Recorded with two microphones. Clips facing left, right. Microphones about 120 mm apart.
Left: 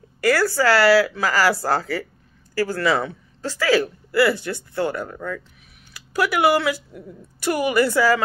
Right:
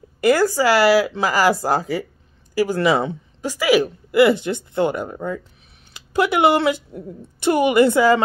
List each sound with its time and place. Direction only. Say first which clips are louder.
0.2 s speech: right 3 dB; 20° right (ahead or behind)